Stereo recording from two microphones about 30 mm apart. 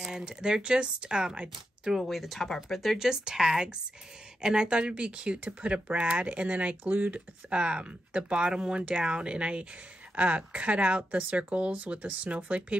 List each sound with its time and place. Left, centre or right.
0.0 s speech: right
0.6 s speech: right
2.0 s speech: centre
3.0 s speech: centre; by 6.8 s right
6.8 s speech: right
7.1 s speech: right
12.4 s speech: right